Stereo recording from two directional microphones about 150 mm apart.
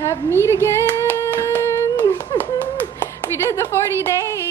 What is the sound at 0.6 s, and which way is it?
Singing, 15° left (ahead or behind).